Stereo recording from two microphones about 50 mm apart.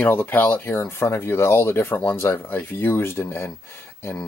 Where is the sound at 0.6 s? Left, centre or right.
Left.